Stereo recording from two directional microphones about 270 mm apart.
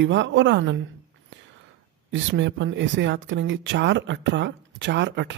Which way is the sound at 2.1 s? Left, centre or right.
Right.